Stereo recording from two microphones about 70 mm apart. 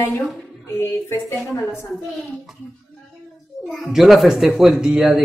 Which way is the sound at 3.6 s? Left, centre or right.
Centre.